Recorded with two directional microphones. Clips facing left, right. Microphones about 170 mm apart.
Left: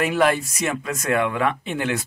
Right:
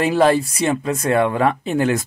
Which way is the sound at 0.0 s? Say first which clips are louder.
Right 4 dB; 30° right (ahead or behind).